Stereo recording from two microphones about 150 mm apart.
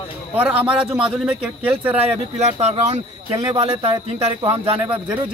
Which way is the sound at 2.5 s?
45° right (ahead or behind).